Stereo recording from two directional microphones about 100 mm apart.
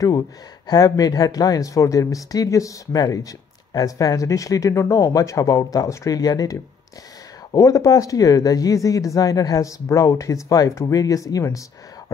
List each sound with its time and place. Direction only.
0.7 s speech: 40° left (ahead or behind)